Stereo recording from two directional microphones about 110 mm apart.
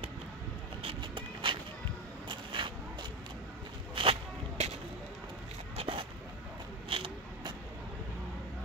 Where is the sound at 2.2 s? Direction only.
45° right (ahead or behind).